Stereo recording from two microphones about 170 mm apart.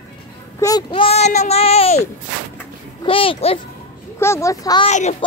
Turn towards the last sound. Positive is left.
turn(degrees=45)  # may be behind; listen again after turning